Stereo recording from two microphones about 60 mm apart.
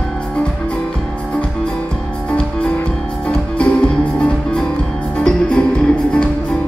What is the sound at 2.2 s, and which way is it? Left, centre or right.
Music, centre.